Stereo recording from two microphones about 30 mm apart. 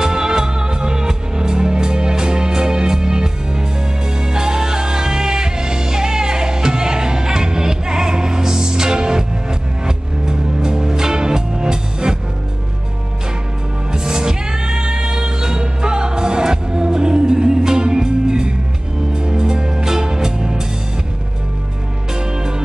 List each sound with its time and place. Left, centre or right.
0.0 s music: right
13.9 s music: right
22.1 s music: right